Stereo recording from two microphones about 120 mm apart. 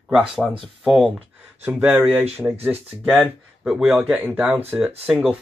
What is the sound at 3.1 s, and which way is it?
Speech, centre (ahead or behind).